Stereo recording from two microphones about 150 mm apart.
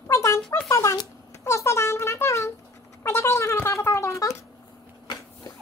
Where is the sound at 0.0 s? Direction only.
20° left (ahead or behind).